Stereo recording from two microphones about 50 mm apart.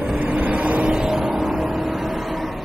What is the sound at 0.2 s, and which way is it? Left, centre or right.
Vehicle, right.